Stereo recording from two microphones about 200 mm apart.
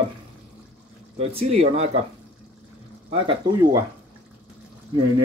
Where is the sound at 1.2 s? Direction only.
30° right (ahead or behind).